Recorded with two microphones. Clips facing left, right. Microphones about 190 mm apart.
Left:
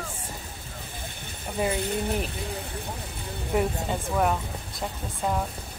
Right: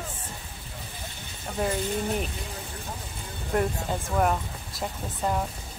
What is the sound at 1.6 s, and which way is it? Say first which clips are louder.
Speech: left 1 dB; centre (ahead or behind).